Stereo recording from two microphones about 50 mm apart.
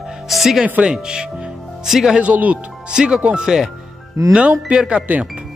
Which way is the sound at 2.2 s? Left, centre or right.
Right.